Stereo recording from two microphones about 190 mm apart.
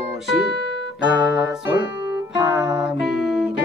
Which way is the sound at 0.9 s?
65° left (ahead or behind).